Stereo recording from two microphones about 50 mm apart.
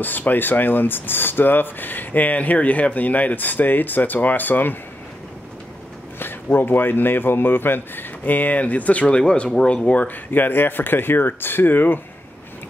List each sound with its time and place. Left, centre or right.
0.0 s speech: left
6.1 s speech: left
10.3 s speech: left